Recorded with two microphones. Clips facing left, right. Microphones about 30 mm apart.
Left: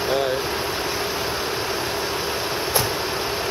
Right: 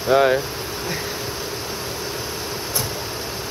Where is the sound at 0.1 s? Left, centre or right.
Right.